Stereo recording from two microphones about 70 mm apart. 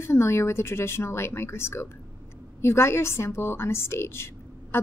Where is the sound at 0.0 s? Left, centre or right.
Left.